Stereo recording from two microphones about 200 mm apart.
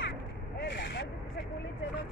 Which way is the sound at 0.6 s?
55° left (ahead or behind).